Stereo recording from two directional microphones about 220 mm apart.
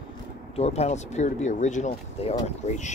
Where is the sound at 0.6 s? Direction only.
30° left (ahead or behind).